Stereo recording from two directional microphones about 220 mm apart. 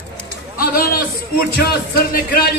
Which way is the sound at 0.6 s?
40° left (ahead or behind).